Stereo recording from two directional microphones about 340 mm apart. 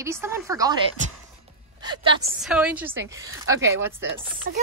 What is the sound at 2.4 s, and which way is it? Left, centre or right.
A woman's voice, centre.